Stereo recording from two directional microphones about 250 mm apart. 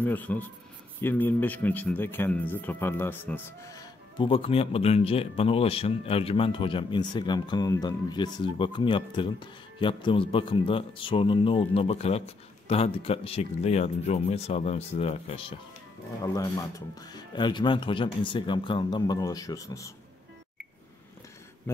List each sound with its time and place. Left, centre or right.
0.0 s speech: centre